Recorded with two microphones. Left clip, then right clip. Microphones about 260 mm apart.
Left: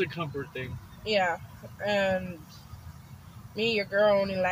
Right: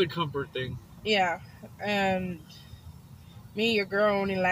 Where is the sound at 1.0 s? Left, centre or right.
Left.